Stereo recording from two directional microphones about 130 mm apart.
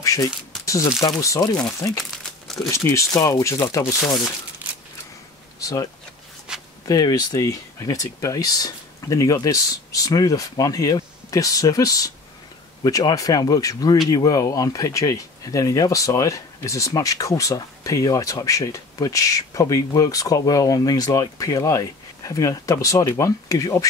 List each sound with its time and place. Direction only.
0.0 s a sound: 25° left (ahead or behind)
0.7 s speech: 25° left (ahead or behind)
2.0 s crumpling: centre (ahead or behind)
2.7 s speech: 20° left (ahead or behind)
5.6 s speech: 25° left (ahead or behind)
6.5 s walk: 5° right (ahead or behind)
6.9 s speech: 30° left (ahead or behind)